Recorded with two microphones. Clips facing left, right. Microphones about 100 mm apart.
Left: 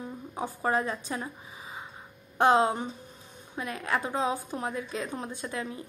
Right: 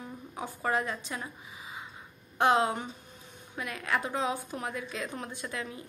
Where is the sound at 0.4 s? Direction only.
30° left (ahead or behind).